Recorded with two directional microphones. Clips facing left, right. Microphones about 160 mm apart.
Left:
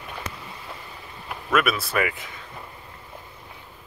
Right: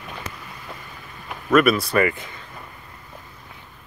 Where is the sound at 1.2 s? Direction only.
Centre (ahead or behind).